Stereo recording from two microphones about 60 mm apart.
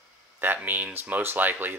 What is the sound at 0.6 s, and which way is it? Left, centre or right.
Speech, right.